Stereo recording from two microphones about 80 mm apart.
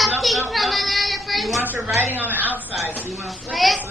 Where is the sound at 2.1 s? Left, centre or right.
Right.